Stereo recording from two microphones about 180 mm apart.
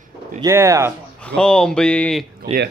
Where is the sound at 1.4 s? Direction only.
5° left (ahead or behind).